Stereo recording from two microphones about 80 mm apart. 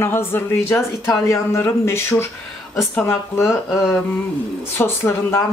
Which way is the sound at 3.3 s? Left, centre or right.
Left.